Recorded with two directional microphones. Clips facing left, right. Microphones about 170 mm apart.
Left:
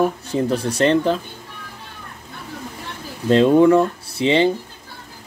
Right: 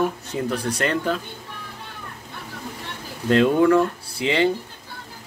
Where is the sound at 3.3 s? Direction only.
25° left (ahead or behind).